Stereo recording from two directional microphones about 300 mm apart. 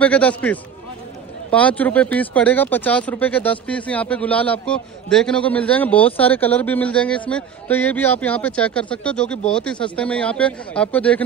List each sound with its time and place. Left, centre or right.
0.0 s speech: centre